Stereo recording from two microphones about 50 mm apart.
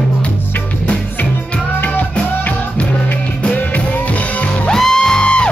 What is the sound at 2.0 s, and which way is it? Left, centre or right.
Music, left.